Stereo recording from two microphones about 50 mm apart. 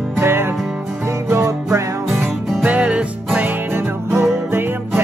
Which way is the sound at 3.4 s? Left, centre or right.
Right.